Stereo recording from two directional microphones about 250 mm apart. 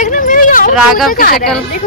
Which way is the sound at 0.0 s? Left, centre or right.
Left.